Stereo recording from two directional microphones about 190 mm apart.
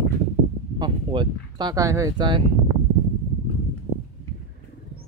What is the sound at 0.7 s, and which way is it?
Speech, 25° right (ahead or behind).